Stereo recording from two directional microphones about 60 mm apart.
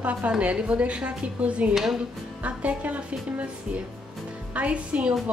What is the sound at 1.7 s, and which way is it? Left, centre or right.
Speech, centre.